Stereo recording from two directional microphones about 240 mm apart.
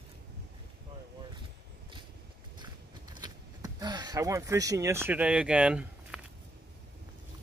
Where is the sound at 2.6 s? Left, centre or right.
Centre.